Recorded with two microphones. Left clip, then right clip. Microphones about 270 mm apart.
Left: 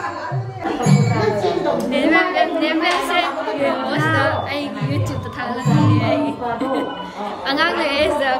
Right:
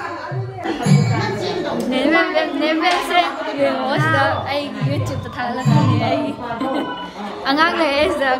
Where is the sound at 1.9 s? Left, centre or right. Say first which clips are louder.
Right 1 dB; centre.